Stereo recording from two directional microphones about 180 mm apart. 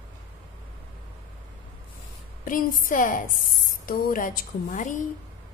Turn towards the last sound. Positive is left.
turn(degrees=45)  # may be behind; listen again after turning